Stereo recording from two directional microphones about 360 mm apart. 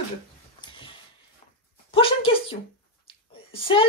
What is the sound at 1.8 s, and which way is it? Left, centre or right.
Speech, centre.